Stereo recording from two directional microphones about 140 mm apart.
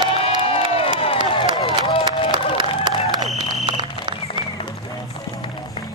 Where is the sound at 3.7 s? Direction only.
35° right (ahead or behind).